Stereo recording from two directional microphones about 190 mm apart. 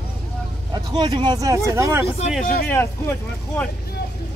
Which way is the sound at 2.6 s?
10° left (ahead or behind).